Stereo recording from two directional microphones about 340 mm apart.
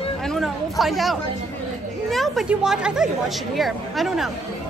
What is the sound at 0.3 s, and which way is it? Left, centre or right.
A woman's voice, centre.